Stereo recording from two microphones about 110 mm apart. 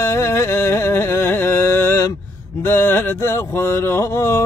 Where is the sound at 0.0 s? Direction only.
25° left (ahead or behind).